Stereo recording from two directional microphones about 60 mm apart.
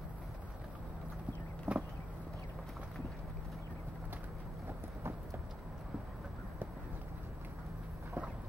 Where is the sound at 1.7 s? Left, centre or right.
Right.